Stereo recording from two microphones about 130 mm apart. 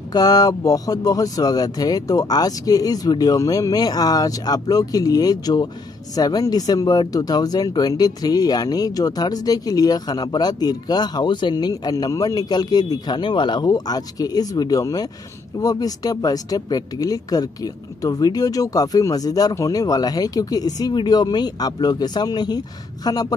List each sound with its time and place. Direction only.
0.1 s speech: 30° left (ahead or behind)